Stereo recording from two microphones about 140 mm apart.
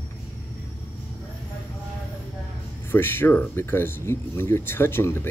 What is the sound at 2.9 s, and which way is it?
Speech, 15° left (ahead or behind).